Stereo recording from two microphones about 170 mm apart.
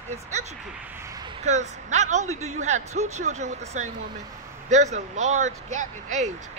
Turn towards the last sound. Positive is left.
turn(degrees=-45)  # may be behind; listen again after turning